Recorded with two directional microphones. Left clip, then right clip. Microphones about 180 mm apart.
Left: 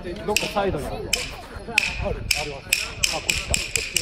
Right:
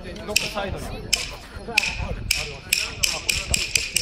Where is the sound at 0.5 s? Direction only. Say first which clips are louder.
Left 5 dB; 60° left (ahead or behind).